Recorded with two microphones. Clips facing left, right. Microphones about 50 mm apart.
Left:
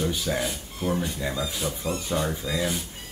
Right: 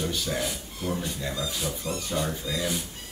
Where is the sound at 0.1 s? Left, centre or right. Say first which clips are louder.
Left 2 dB; centre.